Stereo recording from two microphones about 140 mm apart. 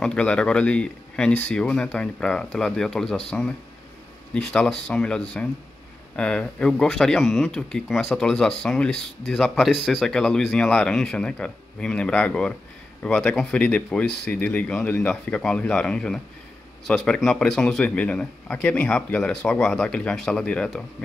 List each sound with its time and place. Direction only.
0.0 s speech: 10° left (ahead or behind)